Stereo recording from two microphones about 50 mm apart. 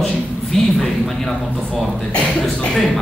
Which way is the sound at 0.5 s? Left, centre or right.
Centre.